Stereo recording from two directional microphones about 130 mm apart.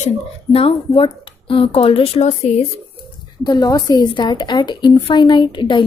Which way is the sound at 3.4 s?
30° left (ahead or behind).